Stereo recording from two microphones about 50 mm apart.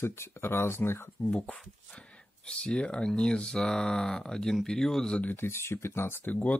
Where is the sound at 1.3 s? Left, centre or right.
Left; by 5.1 s centre.